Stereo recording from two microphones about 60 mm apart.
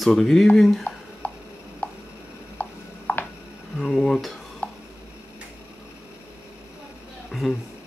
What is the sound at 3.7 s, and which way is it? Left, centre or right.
Speech, centre.